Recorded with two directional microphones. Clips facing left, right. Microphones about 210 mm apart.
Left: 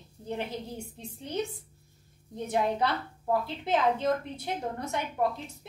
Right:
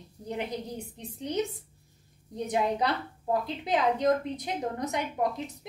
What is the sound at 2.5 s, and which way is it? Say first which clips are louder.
A woman's voice: even; 15° right (ahead or behind).